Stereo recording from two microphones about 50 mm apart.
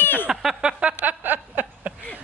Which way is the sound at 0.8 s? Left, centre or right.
Right.